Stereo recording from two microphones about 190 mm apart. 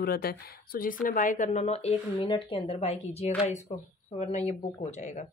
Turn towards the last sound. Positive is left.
turn(degrees=40)  # may be behind; listen again after turning